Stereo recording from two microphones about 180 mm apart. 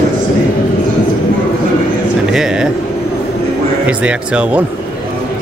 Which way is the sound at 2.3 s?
5° right (ahead or behind).